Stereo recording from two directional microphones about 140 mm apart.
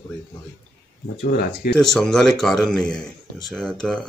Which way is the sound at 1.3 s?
90° left.